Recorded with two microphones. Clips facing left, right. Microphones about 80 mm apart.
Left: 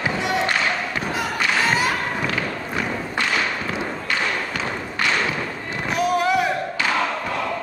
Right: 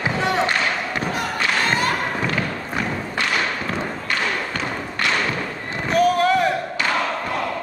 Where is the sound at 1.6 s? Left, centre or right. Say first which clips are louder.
Left 1 dB; centre.